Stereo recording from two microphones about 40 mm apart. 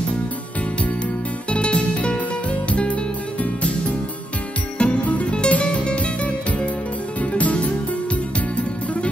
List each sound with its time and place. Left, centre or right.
1.5 s music: left
4.7 s music: left